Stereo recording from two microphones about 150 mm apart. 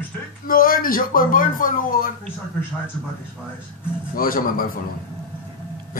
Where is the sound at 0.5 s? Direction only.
70° left (ahead or behind).